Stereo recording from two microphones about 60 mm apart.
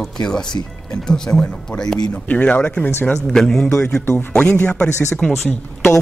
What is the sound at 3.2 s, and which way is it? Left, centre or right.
Speech, centre.